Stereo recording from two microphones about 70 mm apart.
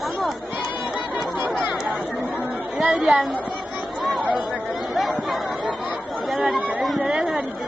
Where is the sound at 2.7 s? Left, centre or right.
Centre.